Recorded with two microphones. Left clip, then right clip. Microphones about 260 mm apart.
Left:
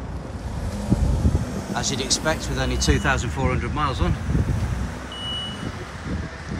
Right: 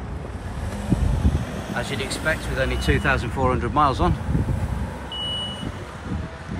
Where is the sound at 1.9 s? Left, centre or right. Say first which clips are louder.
Left 3 dB; centre.